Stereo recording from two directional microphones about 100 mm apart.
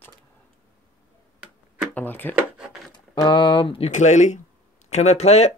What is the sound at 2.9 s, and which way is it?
Speech, 50° left (ahead or behind).